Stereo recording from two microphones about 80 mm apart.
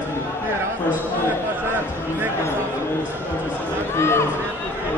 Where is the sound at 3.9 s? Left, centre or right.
Left.